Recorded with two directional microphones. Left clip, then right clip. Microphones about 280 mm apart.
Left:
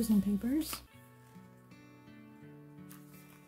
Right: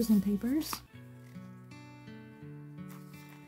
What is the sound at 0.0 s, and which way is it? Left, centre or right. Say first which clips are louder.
Speech: right 2 dB; centre.